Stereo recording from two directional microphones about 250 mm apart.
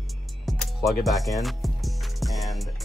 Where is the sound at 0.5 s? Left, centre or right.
Centre.